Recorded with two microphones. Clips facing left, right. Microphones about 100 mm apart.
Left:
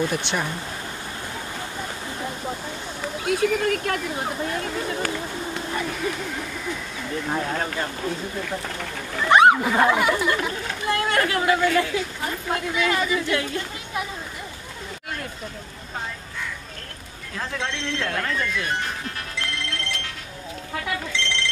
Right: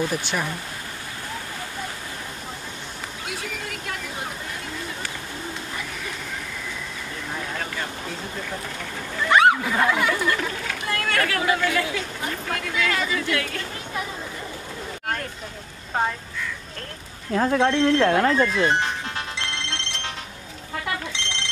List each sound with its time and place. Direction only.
0.1 s speech: 5° right (ahead or behind)
3.3 s speech: 50° left (ahead or behind)
9.3 s speech: 20° left (ahead or behind)
17.4 s speech: 45° right (ahead or behind); by 20.1 s 25° right (ahead or behind)
21.2 s ringtone: 20° right (ahead or behind)